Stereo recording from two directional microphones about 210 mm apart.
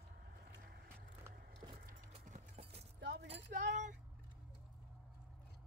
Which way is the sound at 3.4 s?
35° right (ahead or behind).